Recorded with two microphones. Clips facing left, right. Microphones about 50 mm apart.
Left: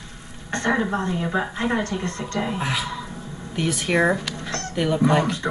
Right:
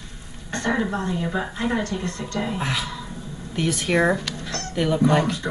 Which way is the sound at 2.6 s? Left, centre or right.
Centre.